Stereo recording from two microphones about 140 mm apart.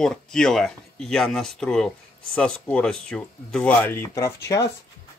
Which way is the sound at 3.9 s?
20° left (ahead or behind).